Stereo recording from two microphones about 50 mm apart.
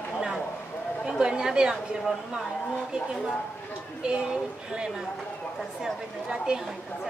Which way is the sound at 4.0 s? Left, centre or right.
Centre.